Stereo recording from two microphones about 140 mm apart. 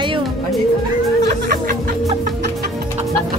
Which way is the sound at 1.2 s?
55° right (ahead or behind).